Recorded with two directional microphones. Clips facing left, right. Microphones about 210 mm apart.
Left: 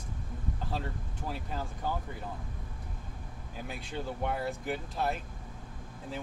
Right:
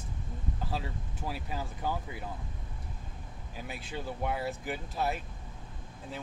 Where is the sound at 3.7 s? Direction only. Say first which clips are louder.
Left 1 dB; 5° right (ahead or behind).